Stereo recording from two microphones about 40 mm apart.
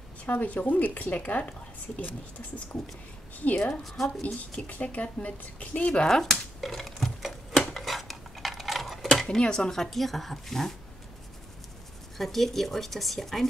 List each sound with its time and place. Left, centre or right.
0.2 s speech: left
3.5 s speech: left
3.8 s speech: centre
4.6 s speech: left
6.0 s speech: centre
6.6 s a sound: centre
7.5 s cutlery: centre
9.4 s speech: left
9.8 s speech: centre
12.2 s speech: centre